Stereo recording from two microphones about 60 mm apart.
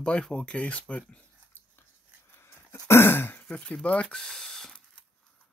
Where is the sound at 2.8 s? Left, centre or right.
Left.